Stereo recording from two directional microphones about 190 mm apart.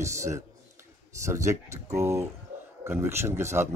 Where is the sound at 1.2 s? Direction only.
15° right (ahead or behind).